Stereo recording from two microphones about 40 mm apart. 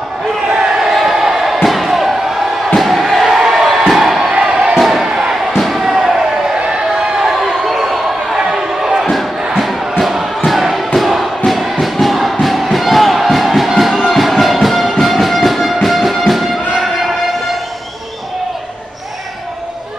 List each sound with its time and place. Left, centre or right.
0.6 s crowd: centre
1.0 s music: centre
2.7 s crowd: centre
4.5 s a sound: right
4.7 s crowd: centre
5.0 s crowd: centre
5.6 s slam: centre
6.6 s a sound: right
7.2 s crowd: centre
7.9 s basketball bounce: centre
9.6 s crowd: centre
11.0 s music: centre
16.8 s a sound: centre